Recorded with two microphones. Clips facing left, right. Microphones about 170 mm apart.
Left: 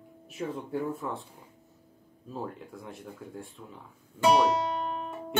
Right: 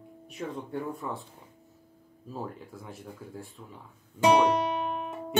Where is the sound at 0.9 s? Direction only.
Centre (ahead or behind).